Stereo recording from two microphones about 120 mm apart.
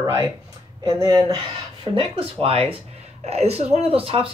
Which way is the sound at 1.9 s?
55° right (ahead or behind).